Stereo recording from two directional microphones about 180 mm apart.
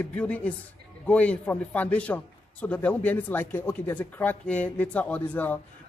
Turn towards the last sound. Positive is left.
turn(degrees=10)  # may be behind; listen again after turning